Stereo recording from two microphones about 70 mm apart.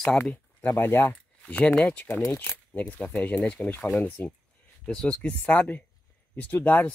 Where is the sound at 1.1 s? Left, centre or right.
Centre.